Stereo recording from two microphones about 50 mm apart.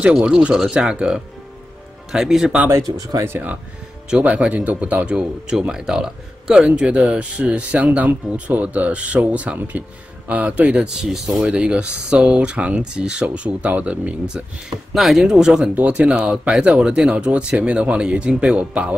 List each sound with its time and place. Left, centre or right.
0.0 s speech: centre
4.2 s speech: right; by 11.4 s centre
11.4 s speech: right
15.0 s speech: centre
15.6 s speech: right
15.9 s speech: centre